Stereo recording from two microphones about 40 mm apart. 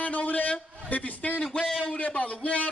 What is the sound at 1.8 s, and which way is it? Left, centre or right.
Speech, left.